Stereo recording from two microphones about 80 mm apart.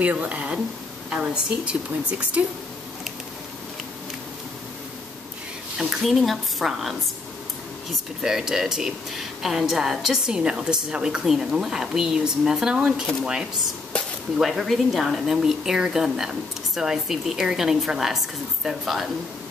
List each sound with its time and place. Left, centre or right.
0.0 s a woman's voice: centre
5.8 s a woman's voice: centre
8.2 s a woman's voice: centre